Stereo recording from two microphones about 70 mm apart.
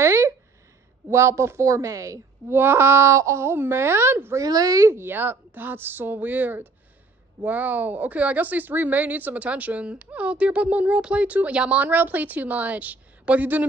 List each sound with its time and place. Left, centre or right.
0.0 s a sound: right
1.1 s a woman's voice: right
2.5 s speech: right
4.4 s speech: right
4.8 s speech: right